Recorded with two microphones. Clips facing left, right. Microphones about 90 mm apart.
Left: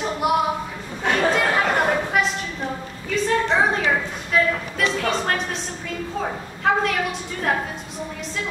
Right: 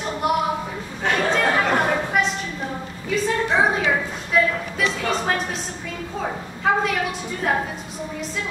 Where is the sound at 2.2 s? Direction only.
Centre (ahead or behind).